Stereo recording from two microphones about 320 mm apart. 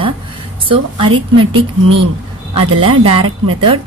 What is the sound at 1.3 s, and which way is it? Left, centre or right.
Speech, centre.